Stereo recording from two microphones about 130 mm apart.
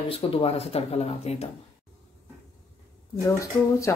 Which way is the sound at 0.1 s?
50° left (ahead or behind).